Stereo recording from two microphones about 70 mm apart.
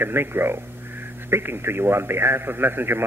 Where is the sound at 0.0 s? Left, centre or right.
Right.